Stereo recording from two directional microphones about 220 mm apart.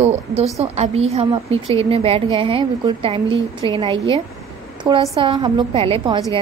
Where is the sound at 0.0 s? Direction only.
30° right (ahead or behind).